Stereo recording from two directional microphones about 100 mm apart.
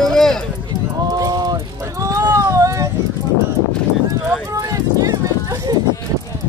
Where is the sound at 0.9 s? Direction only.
35° right (ahead or behind).